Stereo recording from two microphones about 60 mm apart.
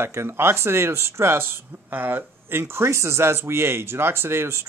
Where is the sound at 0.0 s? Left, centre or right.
Right.